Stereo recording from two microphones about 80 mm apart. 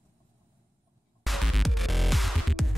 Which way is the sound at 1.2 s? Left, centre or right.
Centre.